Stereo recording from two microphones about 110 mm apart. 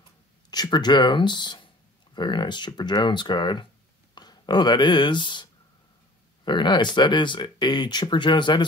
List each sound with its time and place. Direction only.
0.5 s speech: 40° left (ahead or behind)